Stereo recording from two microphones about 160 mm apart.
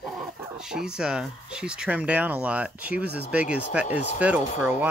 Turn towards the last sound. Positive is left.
turn(degrees=-15)  # may be behind; listen again after turning